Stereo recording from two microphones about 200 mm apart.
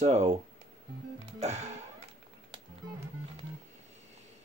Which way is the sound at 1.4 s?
35° right (ahead or behind).